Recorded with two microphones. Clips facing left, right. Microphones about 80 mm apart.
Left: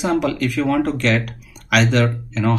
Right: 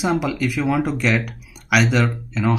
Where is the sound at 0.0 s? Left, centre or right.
Centre.